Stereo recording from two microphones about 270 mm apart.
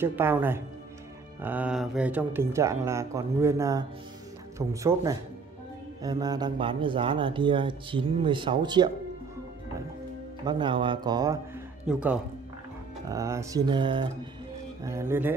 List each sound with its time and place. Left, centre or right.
0.0 s speech: centre
10.4 s speech: centre